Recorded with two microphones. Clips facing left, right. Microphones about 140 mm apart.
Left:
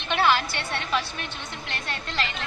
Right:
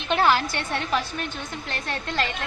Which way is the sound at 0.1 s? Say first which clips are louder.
Right 2 dB; 45° right (ahead or behind).